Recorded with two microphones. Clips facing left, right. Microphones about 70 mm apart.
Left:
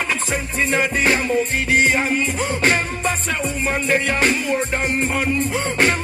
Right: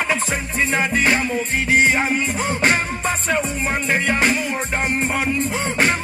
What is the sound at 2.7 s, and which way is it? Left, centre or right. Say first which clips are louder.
Music: even; right.